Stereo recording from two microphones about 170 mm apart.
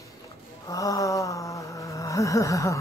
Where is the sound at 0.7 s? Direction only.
20° left (ahead or behind).